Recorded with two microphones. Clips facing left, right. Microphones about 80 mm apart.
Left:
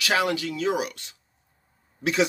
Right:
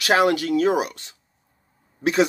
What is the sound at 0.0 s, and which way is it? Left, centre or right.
Speech, right.